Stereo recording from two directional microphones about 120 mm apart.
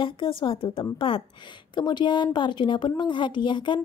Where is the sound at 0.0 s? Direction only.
45° left (ahead or behind).